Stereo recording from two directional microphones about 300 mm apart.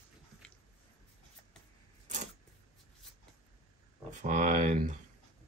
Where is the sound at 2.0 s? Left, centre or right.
Right.